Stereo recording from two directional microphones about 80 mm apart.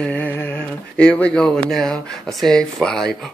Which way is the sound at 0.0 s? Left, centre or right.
Centre.